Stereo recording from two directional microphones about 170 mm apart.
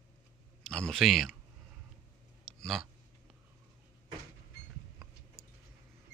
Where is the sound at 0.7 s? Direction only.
Centre (ahead or behind).